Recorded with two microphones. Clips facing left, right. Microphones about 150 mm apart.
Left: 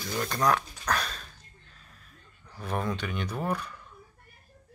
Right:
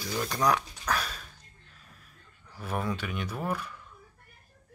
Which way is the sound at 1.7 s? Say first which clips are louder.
Right 2 dB; 5° right (ahead or behind).